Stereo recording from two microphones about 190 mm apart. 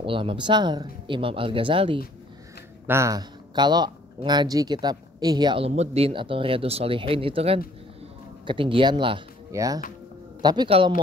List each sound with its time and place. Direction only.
0.0 s a man's voice: 25° right (ahead or behind)
2.9 s a man's voice: 15° right (ahead or behind)